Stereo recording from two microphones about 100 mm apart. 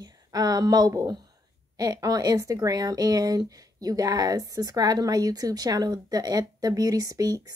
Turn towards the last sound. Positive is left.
turn(degrees=-40)  # may be behind; listen again after turning